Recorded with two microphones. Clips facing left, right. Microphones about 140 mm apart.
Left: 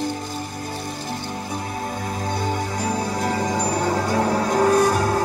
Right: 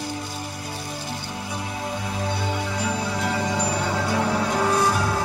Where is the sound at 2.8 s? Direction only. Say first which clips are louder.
Left 3 dB; 40° left (ahead or behind).